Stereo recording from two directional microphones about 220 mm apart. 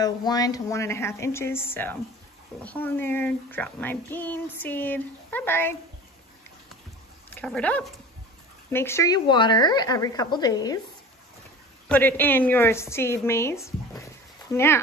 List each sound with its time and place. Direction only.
0.0 s speech: 15° left (ahead or behind)
7.2 s speech: 5° left (ahead or behind)
11.9 s speech: 10° left (ahead or behind)